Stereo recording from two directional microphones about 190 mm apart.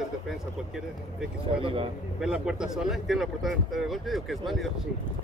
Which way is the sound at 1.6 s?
30° right (ahead or behind).